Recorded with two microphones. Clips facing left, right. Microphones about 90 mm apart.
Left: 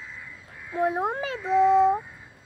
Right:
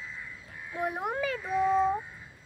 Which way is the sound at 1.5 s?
85° left.